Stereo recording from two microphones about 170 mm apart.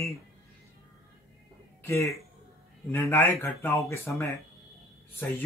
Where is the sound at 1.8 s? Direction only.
15° left (ahead or behind).